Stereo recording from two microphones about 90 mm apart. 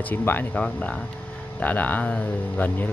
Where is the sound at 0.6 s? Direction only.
10° left (ahead or behind).